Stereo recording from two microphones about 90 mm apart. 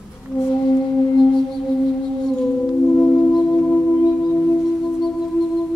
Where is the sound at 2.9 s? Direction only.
20° left (ahead or behind).